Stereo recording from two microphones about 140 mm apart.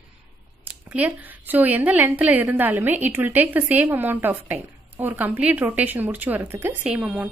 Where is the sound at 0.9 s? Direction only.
10° right (ahead or behind).